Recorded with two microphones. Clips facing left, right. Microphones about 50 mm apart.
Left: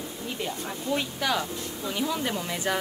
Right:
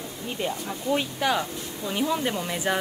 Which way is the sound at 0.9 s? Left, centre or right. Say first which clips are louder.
Right 2 dB; centre.